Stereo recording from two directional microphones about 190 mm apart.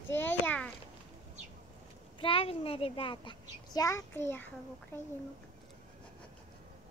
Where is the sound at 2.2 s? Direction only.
30° left (ahead or behind); by 4.5 s 10° left (ahead or behind).